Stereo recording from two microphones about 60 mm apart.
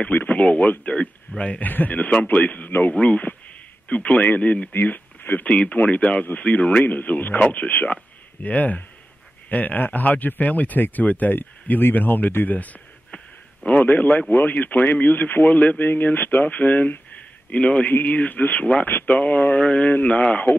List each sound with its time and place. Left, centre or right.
0.0 s speech: left
4.7 s speech: left
18.9 s speech: left
19.1 s speech: left